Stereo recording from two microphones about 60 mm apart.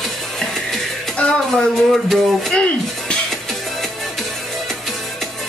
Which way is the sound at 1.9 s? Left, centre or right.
Centre.